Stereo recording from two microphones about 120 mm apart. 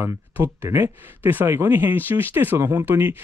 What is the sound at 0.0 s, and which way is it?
Speech, 20° right (ahead or behind).